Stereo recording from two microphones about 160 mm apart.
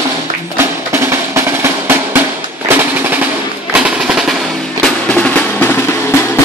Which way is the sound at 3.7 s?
5° right (ahead or behind).